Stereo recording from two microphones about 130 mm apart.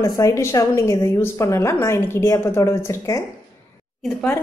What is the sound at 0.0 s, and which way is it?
A woman's voice, 25° left (ahead or behind).